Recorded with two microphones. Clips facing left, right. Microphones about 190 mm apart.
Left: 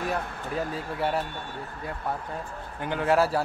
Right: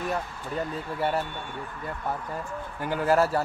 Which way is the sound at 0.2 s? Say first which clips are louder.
Left 2 dB; 60° left (ahead or behind).